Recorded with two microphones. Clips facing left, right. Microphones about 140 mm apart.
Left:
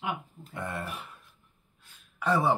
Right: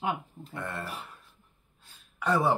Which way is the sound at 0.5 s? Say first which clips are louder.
Left 1 dB; 15° left (ahead or behind).